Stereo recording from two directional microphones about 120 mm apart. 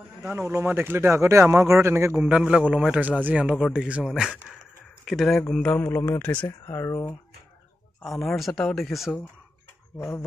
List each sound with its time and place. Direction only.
0.4 s speech: 20° right (ahead or behind)
2.2 s a man's voice: 10° right (ahead or behind); by 7.2 s 20° left (ahead or behind)
8.2 s speech: centre (ahead or behind)
9.9 s speech: 20° left (ahead or behind)